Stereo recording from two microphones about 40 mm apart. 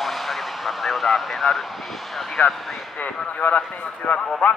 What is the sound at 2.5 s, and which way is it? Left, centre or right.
Speech, centre.